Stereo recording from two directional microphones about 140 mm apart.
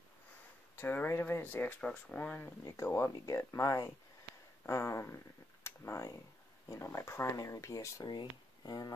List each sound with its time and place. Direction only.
0.7 s speech: 15° left (ahead or behind)